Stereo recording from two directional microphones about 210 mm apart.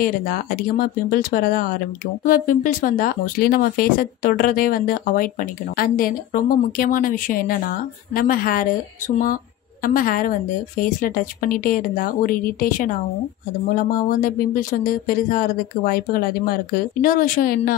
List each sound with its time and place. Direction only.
0.0 s speech: 40° left (ahead or behind)
14.2 s speech: 40° left (ahead or behind)